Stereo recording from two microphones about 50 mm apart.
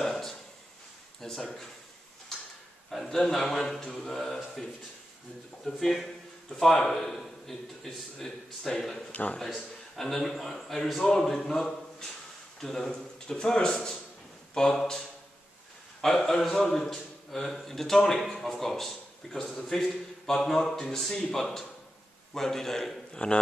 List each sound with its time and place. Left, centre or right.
0.0 s a sound: centre
2.9 s a man's voice: centre
5.7 s a man's voice: centre
9.1 s speech: left
9.9 s a man's voice: centre